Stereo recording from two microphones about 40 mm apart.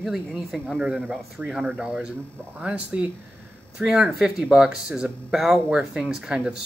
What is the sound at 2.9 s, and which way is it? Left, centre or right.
Speech, right.